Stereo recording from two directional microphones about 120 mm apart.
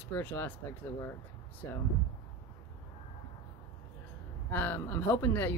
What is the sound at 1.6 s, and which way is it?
Speech, 25° left (ahead or behind).